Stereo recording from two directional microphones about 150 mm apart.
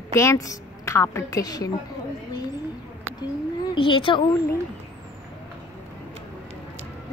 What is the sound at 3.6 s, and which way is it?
Speech, 35° left (ahead or behind).